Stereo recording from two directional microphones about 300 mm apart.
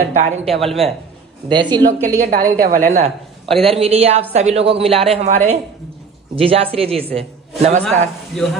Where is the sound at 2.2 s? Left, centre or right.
Right.